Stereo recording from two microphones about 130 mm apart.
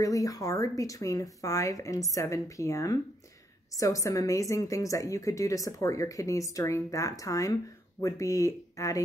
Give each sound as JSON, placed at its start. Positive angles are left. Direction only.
{"t": 0.0, "sound": "a woman's voice", "side_deg": 25}